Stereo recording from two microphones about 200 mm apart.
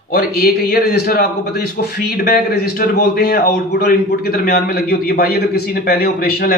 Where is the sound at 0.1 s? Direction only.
50° left (ahead or behind).